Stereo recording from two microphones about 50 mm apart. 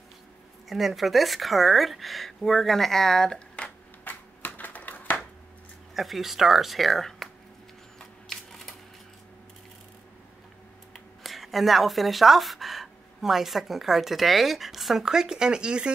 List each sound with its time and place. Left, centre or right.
0.7 s speech: centre
4.0 s typewriter: left
4.6 s a sound: left
5.9 s speech: centre
8.0 s camera: centre
10.9 s speech: centre